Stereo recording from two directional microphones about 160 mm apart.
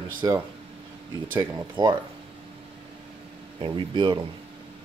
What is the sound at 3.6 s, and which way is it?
Speech, 30° right (ahead or behind).